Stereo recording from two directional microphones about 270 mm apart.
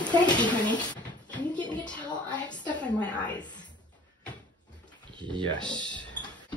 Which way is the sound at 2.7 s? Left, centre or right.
Centre.